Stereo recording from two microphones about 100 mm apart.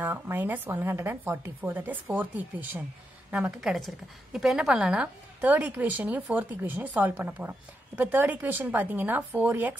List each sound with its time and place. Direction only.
0.0 s a woman's voice: 20° right (ahead or behind)